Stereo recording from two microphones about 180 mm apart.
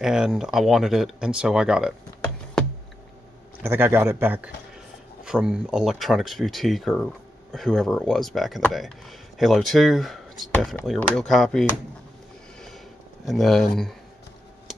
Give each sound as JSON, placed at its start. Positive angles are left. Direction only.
{"t": 0.0, "sound": "speech", "side_deg": -5}
{"t": 3.6, "sound": "speech", "side_deg": -10}
{"t": 12.5, "sound": "a sound", "side_deg": 0}